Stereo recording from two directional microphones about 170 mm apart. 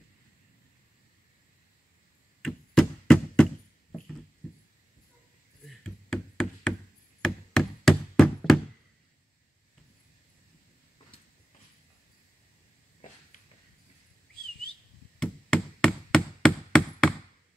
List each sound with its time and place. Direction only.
2.4 s chop: 5° left (ahead or behind)
5.7 s knock: 5° left (ahead or behind)
7.2 s a sound: 5° left (ahead or behind)
15.1 s chop: 5° left (ahead or behind)